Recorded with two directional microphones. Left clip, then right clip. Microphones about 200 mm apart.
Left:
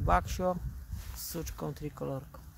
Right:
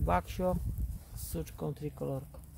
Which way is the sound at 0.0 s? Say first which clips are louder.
Left 2 dB; 5° left (ahead or behind).